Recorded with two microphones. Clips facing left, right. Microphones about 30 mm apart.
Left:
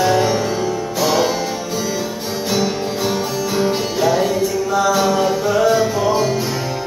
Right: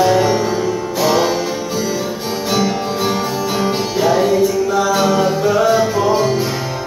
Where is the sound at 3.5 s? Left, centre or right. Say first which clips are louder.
Left 1 dB; centre.